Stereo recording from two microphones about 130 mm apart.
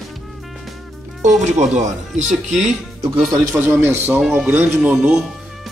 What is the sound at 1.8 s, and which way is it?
Speech, 65° right (ahead or behind).